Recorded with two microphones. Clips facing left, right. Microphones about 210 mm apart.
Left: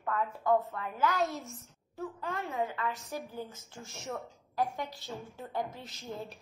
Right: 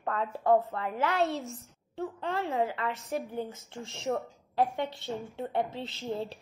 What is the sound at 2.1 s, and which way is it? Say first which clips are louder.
Speech: right 5 dB; 30° right (ahead or behind).